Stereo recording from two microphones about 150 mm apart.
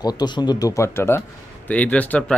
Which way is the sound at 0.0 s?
25° left (ahead or behind).